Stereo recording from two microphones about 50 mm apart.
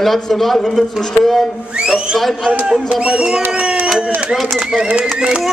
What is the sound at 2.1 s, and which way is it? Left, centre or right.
Speech, centre.